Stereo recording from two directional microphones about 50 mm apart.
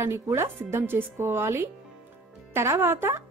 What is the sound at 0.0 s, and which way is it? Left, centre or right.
A woman's voice, right.